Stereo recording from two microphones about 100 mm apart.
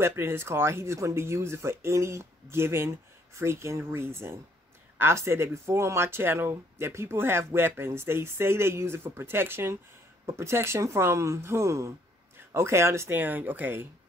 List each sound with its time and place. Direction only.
0.0 s speech: 25° right (ahead or behind)